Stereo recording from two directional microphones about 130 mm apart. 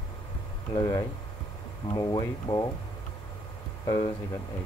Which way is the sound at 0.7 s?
30° left (ahead or behind).